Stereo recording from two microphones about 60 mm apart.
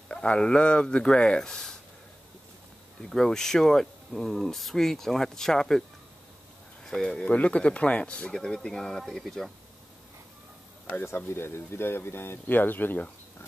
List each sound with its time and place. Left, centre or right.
0.1 s speech: centre
3.1 s speech: centre
7.2 s speech: left; by 9.5 s centre
11.1 s speech: left